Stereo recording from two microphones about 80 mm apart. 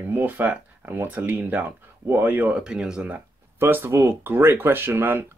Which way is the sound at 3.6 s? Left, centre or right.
Right.